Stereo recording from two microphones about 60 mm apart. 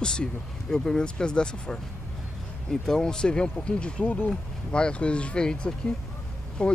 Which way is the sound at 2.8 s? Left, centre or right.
Centre.